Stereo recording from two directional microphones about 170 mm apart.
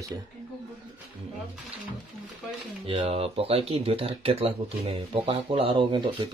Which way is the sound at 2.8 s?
35° right (ahead or behind).